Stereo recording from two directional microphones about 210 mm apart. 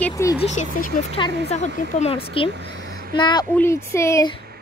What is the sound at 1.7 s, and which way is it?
Speech, 30° left (ahead or behind).